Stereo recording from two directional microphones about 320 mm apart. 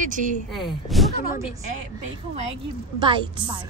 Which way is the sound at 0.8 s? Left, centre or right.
Centre.